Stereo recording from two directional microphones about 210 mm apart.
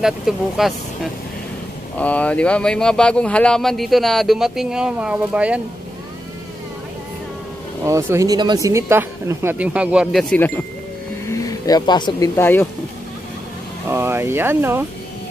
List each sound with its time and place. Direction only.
0.6 s speech: centre (ahead or behind)
7.8 s speech: 15° right (ahead or behind)
11.2 s speech: 15° left (ahead or behind)
13.8 s speech: 10° right (ahead or behind)